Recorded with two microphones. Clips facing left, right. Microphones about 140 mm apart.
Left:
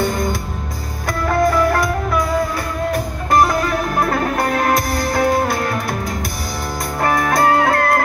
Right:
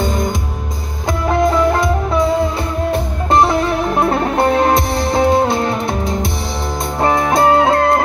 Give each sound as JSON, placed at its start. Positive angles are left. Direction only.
{"t": 0.0, "sound": "music", "side_deg": -20}